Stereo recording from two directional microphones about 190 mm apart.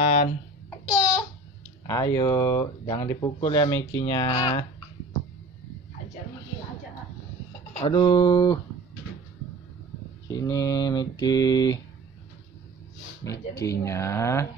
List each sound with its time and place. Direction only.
0.0 s babbling: 35° left (ahead or behind)
1.9 s speech: 15° left (ahead or behind)
7.8 s speech: 20° left (ahead or behind)
10.2 s speech: 20° left (ahead or behind)
13.3 s speech: 15° left (ahead or behind)